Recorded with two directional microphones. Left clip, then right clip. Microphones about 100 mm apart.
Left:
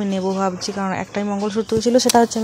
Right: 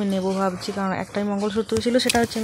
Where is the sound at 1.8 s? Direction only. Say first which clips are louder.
Left 6 dB; 35° left (ahead or behind).